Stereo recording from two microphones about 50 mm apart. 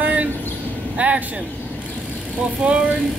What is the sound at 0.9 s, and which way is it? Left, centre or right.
Speech, right.